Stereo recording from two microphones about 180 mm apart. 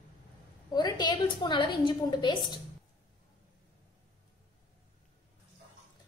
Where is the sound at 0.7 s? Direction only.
20° left (ahead or behind).